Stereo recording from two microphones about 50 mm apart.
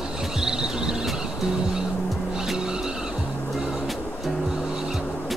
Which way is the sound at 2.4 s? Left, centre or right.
Centre.